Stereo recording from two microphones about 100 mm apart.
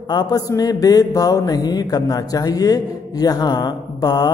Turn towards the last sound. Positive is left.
turn(degrees=40)  # may be behind; listen again after turning